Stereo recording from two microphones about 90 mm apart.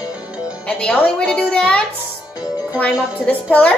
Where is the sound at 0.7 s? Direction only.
10° left (ahead or behind).